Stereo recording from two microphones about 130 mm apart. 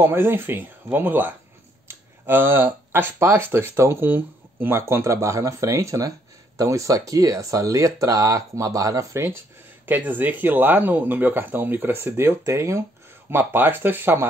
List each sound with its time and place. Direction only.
0.0 s speech: 15° right (ahead or behind)